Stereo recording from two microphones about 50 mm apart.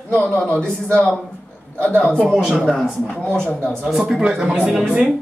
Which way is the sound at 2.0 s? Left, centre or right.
Left.